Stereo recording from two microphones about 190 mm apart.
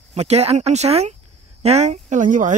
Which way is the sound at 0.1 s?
35° right (ahead or behind).